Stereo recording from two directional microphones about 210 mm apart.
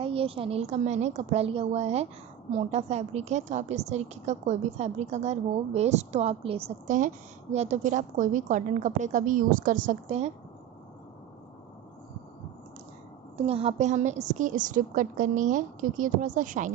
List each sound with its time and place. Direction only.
0.0 s a woman's voice: 25° right (ahead or behind)
13.4 s a woman's voice: 30° right (ahead or behind)